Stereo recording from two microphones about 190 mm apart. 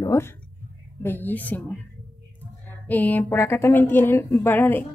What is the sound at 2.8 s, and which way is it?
Speech, 10° left (ahead or behind).